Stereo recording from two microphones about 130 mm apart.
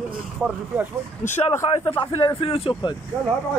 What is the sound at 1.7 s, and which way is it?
Speech, 45° left (ahead or behind).